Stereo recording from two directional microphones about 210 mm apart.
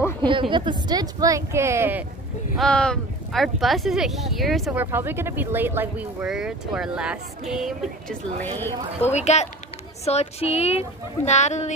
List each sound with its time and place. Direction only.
0.2 s speech: 20° right (ahead or behind)
2.5 s speech: 5° left (ahead or behind)
8.4 s speech: 10° left (ahead or behind)
9.1 s speech: 30° left (ahead or behind)